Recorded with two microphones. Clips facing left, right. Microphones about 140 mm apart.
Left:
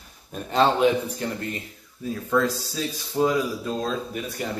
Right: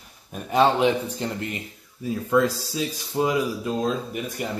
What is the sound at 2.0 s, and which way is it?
Speech, 10° right (ahead or behind).